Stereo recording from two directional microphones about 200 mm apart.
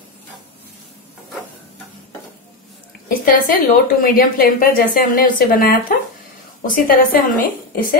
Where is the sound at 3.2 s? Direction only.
45° left (ahead or behind).